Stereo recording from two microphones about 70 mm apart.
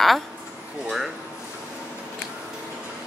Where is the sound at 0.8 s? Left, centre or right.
Centre.